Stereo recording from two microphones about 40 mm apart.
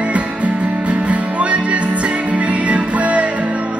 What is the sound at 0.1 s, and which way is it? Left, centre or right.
Music, right.